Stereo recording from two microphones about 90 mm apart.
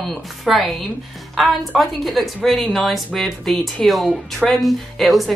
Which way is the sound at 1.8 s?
Centre (ahead or behind).